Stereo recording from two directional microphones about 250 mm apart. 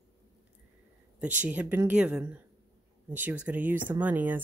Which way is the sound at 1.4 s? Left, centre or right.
Centre.